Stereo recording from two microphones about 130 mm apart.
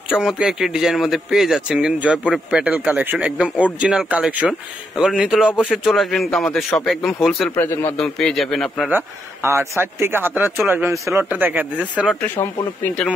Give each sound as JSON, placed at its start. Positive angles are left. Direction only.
{"t": 0.1, "sound": "a man's voice", "side_deg": -5}
{"t": 7.5, "sound": "a man's voice", "side_deg": 20}
{"t": 8.0, "sound": "a man's voice", "side_deg": 5}
{"t": 8.8, "sound": "a man's voice", "side_deg": -15}
{"t": 12.4, "sound": "speech", "side_deg": 25}